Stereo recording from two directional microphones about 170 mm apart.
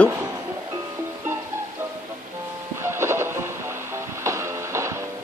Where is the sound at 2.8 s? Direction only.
15° right (ahead or behind).